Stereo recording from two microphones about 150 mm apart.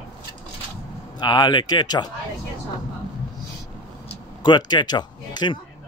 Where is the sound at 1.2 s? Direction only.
30° left (ahead or behind).